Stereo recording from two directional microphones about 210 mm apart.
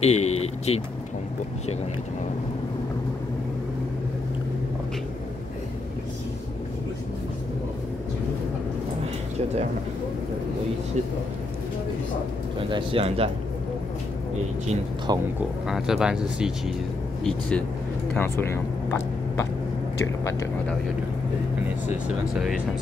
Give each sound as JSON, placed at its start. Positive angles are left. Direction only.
{"t": 0.0, "sound": "speech", "side_deg": 30}
{"t": 12.5, "sound": "speech", "side_deg": -25}
{"t": 15.1, "sound": "speech", "side_deg": -20}
{"t": 15.6, "sound": "speech", "side_deg": 0}